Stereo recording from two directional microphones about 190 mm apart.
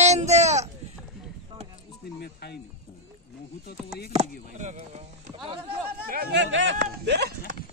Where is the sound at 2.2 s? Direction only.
60° left (ahead or behind).